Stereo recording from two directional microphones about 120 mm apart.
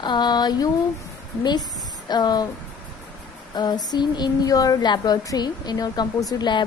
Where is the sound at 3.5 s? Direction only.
35° left (ahead or behind).